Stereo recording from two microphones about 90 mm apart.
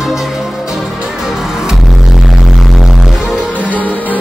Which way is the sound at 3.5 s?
20° left (ahead or behind).